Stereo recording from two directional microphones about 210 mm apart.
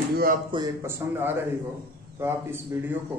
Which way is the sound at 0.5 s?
15° right (ahead or behind).